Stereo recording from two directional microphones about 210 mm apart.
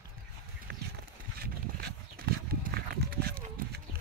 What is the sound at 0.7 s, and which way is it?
Horse, 45° right (ahead or behind).